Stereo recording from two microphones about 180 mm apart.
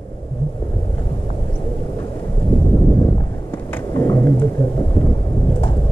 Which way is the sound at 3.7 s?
20° left (ahead or behind).